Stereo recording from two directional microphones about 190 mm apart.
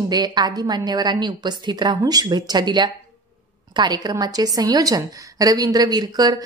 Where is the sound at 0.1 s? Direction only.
20° right (ahead or behind).